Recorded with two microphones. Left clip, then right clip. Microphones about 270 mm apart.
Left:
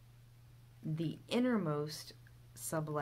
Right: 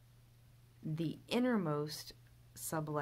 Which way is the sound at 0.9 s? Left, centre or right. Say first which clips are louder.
Even; centre.